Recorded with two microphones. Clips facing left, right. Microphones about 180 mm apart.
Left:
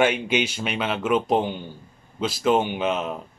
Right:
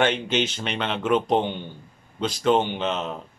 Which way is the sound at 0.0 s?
10° left (ahead or behind).